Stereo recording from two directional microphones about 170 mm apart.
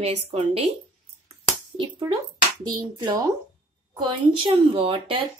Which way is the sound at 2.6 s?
25° right (ahead or behind).